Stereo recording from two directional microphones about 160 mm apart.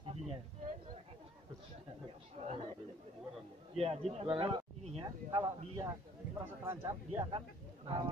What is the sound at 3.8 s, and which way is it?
A man's voice, 40° right (ahead or behind).